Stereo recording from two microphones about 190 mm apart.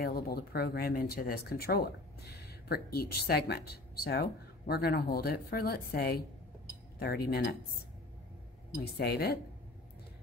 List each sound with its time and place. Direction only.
0.0 s speech: 55° left (ahead or behind)
8.7 s speech: 60° left (ahead or behind)